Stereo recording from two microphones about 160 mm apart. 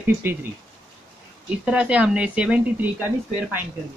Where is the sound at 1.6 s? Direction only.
10° right (ahead or behind).